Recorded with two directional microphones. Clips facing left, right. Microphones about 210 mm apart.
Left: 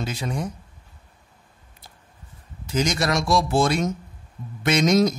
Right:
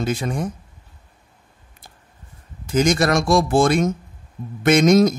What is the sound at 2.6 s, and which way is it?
A man's voice, 50° right (ahead or behind).